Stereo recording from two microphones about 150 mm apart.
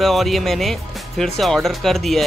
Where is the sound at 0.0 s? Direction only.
Centre (ahead or behind).